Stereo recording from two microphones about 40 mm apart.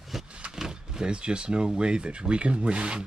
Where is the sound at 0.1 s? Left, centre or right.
Centre.